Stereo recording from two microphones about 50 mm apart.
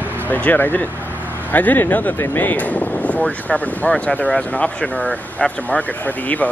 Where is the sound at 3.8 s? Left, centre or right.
Left.